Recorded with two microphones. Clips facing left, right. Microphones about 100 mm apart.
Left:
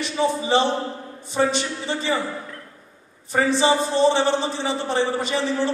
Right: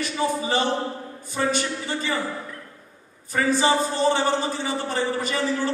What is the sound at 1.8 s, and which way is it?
Speech, 25° left (ahead or behind).